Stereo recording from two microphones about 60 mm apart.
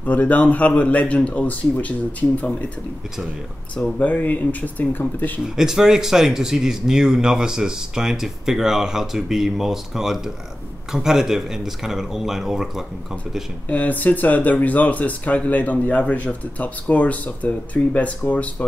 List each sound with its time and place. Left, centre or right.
0.0 s speech: left
3.7 s speech: left
5.4 s speech: centre
13.7 s speech: left